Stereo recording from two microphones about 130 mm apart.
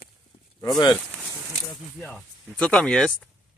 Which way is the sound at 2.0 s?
5° left (ahead or behind).